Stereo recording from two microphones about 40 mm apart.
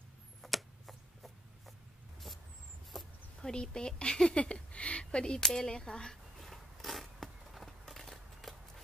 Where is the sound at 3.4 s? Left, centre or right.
Centre.